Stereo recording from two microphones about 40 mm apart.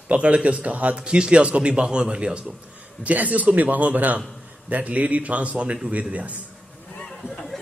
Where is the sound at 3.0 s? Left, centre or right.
Right.